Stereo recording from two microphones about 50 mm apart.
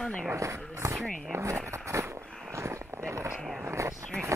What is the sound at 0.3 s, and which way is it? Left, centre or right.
Speech, right.